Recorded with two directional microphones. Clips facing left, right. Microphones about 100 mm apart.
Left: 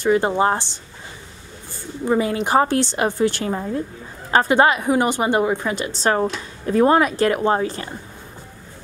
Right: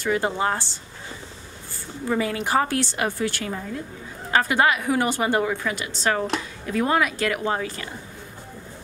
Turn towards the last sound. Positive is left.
turn(degrees=35)  # may be behind; listen again after turning